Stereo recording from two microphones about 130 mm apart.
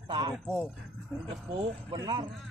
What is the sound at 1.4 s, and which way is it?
Speech, 45° right (ahead or behind).